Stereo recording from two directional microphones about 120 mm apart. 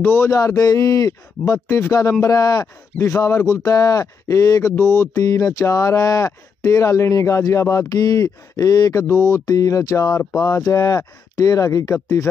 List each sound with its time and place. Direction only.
0.0 s speech: 20° left (ahead or behind)